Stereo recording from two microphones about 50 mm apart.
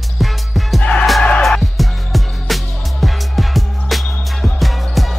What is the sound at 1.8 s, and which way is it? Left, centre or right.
Music, centre.